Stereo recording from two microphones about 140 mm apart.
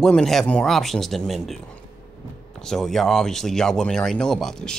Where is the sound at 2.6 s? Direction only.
5° left (ahead or behind).